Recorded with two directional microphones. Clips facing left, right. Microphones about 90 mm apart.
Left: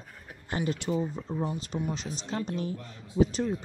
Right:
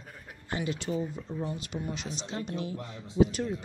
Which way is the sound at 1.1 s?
35° left (ahead or behind).